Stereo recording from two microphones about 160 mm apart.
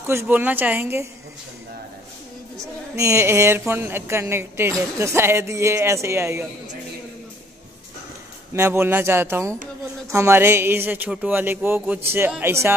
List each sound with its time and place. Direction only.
0.0 s a woman's voice: 15° right (ahead or behind)
2.5 s a woman's voice: 20° right (ahead or behind)
8.5 s a woman's voice: 15° right (ahead or behind)